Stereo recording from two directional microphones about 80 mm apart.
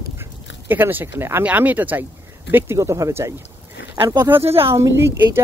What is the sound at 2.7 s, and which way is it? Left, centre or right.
Speech, right.